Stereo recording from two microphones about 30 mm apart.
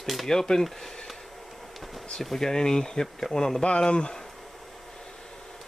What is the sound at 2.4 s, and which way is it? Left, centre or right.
Speech, centre.